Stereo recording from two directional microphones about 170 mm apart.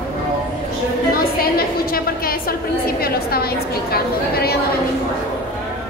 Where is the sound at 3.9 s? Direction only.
65° left (ahead or behind).